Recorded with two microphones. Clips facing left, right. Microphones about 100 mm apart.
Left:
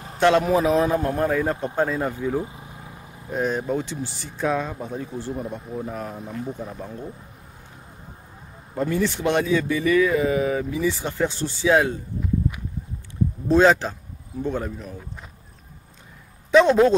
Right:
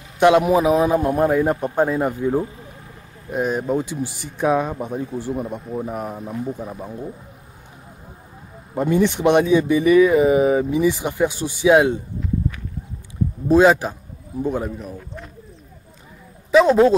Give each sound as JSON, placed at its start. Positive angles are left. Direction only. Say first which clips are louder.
{"t": 0.2, "sound": "speech", "louder": "right 4 dB", "side_deg": -15}
{"t": 2.4, "sound": "vehicle", "louder": "right 3 dB", "side_deg": 15}
{"t": 3.3, "sound": "speech", "louder": "right 3 dB", "side_deg": -5}
{"t": 8.7, "sound": "speech", "louder": "right 5 dB", "side_deg": -20}
{"t": 13.5, "sound": "speech", "louder": "right 3 dB", "side_deg": -10}
{"t": 16.5, "sound": "a man's voice", "louder": "right 2 dB", "side_deg": -5}